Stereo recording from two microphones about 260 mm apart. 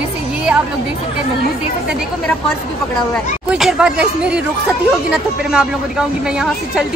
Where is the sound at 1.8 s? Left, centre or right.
Centre.